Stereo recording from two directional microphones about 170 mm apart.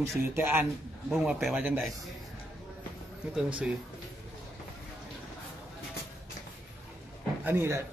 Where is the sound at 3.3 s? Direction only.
5° right (ahead or behind).